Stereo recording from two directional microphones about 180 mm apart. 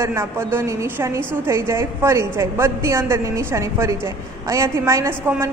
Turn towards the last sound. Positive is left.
turn(degrees=-15)  # may be behind; listen again after turning